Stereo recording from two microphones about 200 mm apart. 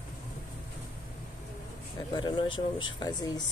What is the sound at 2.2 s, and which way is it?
Speech, 20° left (ahead or behind).